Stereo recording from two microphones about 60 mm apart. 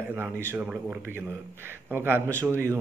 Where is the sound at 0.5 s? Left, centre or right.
Centre.